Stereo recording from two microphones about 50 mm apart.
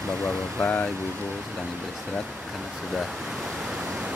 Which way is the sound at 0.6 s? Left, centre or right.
Left.